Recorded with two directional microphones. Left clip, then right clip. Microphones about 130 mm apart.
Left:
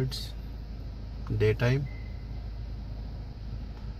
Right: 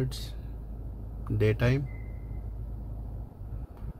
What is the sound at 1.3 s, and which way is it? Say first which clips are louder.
Speech: left 1 dB; 50° right (ahead or behind).